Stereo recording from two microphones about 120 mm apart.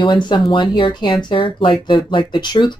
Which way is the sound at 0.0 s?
40° left (ahead or behind).